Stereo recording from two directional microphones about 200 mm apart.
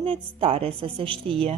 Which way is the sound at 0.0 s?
30° right (ahead or behind).